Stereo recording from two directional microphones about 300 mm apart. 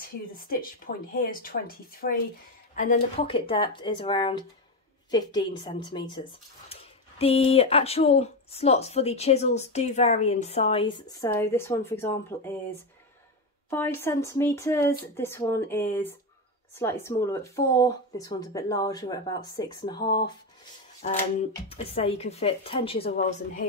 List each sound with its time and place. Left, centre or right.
0.4 s speech: left; by 12.4 s centre
13.7 s speech: centre
21.6 s speech: centre